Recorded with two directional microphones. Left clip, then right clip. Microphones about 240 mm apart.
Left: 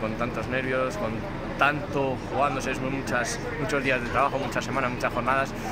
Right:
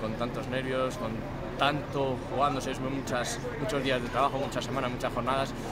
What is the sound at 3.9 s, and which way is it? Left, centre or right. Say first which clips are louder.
Speech: left 3 dB; centre.